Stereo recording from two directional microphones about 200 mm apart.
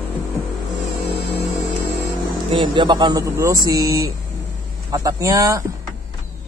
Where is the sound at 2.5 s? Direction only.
25° right (ahead or behind).